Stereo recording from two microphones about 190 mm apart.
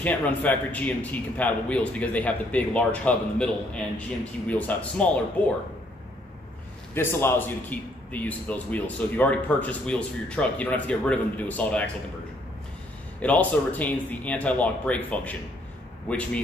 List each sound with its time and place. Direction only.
0.0 s a man's voice: 10° left (ahead or behind)
6.9 s a man's voice: 10° left (ahead or behind)
13.2 s a man's voice: 10° left (ahead or behind)